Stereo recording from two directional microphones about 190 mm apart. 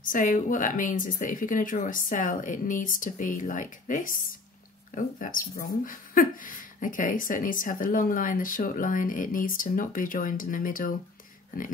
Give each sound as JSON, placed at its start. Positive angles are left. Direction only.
{"t": 0.0, "sound": "speech", "side_deg": 45}